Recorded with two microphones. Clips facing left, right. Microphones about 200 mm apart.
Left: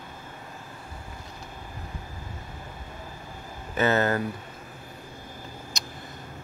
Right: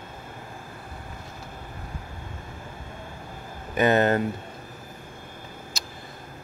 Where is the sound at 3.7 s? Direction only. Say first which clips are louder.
Right 3 dB; 15° right (ahead or behind).